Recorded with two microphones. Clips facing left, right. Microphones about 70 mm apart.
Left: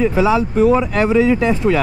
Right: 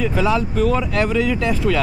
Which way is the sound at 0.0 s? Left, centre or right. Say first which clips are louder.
Left 4 dB; centre.